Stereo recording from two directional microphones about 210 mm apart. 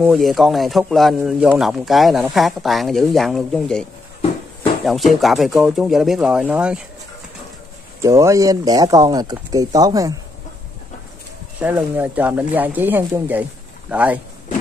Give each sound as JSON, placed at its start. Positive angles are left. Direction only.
{"t": 0.0, "sound": "speech", "side_deg": 0}
{"t": 4.8, "sound": "speech", "side_deg": 0}
{"t": 8.0, "sound": "speech", "side_deg": -15}
{"t": 11.6, "sound": "speech", "side_deg": -10}